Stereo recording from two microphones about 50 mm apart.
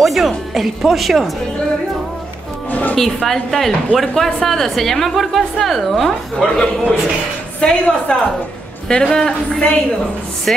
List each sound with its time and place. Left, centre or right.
0.0 s a woman's voice: centre
2.7 s music: left
3.0 s a woman's voice: centre